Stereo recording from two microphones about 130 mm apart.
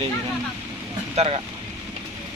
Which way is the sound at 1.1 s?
50° right (ahead or behind).